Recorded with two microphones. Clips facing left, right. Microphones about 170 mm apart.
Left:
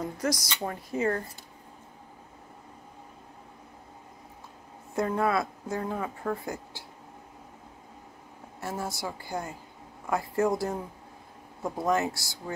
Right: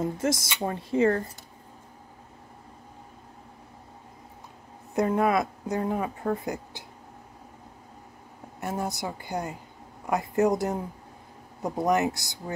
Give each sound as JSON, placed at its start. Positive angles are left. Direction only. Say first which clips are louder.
{"t": 0.0, "sound": "speech", "louder": "right 3 dB", "side_deg": -25}
{"t": 4.9, "sound": "speech", "louder": "right 3 dB", "side_deg": -20}
{"t": 8.5, "sound": "speech", "louder": "right 3 dB", "side_deg": -20}